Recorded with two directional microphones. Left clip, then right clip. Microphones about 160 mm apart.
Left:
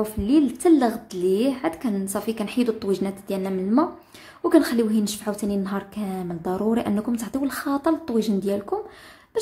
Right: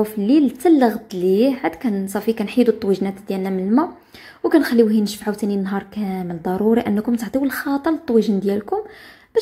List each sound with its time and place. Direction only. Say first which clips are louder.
0.0 s a woman's voice: right 4 dB; 15° right (ahead or behind)